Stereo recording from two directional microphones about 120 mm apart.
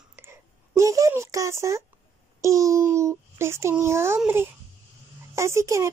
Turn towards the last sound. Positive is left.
turn(degrees=-25)  # may be behind; listen again after turning